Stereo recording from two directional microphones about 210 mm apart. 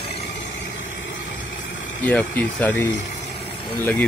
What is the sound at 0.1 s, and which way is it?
Vehicle, 60° left (ahead or behind).